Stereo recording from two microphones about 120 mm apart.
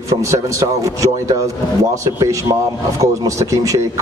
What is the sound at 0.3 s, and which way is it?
A man's voice, 25° right (ahead or behind).